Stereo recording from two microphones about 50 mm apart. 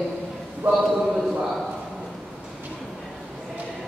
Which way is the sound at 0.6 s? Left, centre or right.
Right.